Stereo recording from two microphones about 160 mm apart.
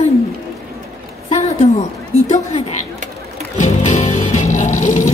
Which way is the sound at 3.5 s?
45° left (ahead or behind).